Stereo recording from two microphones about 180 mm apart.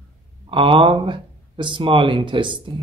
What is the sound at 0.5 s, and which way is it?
Speech, 30° right (ahead or behind).